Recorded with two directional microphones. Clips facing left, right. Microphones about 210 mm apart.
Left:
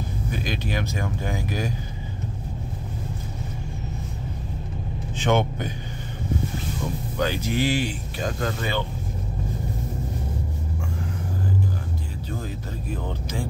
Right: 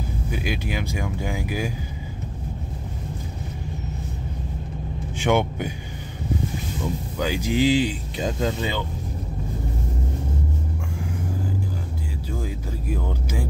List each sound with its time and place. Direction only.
0.3 s speech: 10° right (ahead or behind)
5.2 s speech: 10° right (ahead or behind)
7.2 s speech: 10° right (ahead or behind)
12.9 s speech: 10° right (ahead or behind)